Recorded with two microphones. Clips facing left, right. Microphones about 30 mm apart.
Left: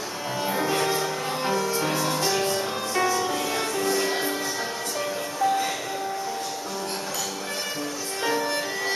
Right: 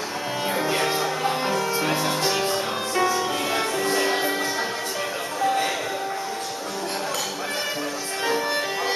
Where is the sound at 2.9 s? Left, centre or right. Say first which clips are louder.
Right 2 dB; centre.